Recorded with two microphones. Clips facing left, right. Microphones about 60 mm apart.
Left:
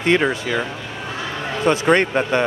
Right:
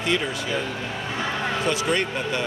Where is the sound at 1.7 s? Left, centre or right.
Left.